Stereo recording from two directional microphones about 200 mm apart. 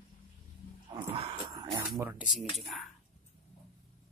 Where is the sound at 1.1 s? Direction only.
25° right (ahead or behind).